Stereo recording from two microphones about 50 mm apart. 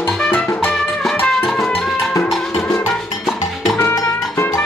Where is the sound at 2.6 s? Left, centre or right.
Left.